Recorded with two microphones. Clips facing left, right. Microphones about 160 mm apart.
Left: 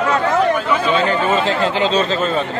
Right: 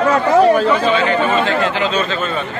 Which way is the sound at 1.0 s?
35° left (ahead or behind).